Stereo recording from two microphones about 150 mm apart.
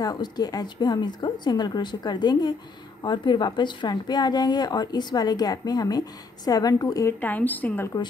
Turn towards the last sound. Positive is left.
turn(degrees=10)  # may be behind; listen again after turning